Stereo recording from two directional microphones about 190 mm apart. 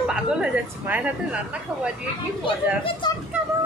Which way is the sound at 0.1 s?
5° right (ahead or behind).